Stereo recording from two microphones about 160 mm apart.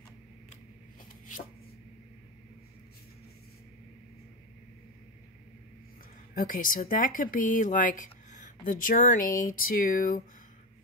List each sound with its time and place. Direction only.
6.3 s speech: 60° left (ahead or behind)